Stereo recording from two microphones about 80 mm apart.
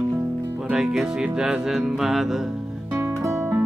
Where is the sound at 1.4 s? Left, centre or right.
Centre.